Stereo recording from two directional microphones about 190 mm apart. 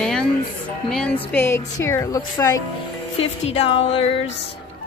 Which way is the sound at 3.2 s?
30° left (ahead or behind).